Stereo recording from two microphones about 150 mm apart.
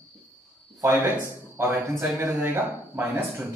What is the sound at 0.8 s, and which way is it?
Speech, 15° right (ahead or behind).